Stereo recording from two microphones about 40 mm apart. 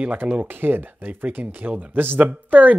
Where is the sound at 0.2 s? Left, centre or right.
Right.